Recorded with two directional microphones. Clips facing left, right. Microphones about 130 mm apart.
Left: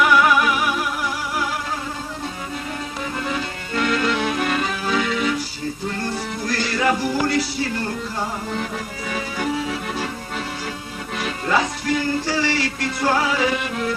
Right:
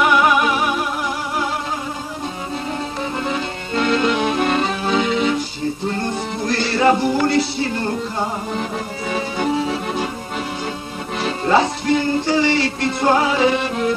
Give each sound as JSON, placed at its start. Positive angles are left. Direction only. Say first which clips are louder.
{"t": 0.0, "sound": "music", "louder": "right 1 dB", "side_deg": -25}
{"t": 3.3, "sound": "music", "louder": "right 3 dB", "side_deg": -25}
{"t": 11.1, "sound": "music", "louder": "right 5 dB", "side_deg": -30}